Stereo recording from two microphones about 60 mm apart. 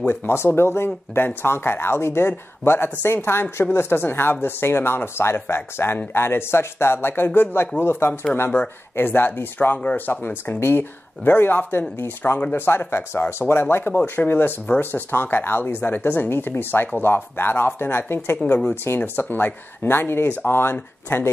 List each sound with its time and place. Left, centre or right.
0.1 s speech: left
8.1 s speech: centre
8.9 s speech: left
12.4 s speech: left